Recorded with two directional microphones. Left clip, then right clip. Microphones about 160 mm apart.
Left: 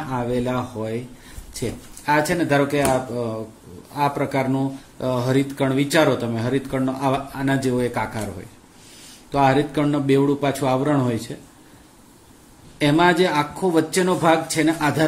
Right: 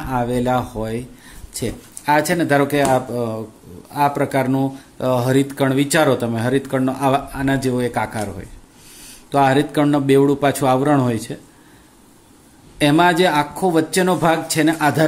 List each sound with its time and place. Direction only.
0.1 s speech: 35° right (ahead or behind)
12.7 s speech: 35° right (ahead or behind)